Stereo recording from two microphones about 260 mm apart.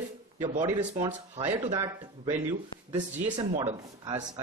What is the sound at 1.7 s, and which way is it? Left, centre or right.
Speech, centre.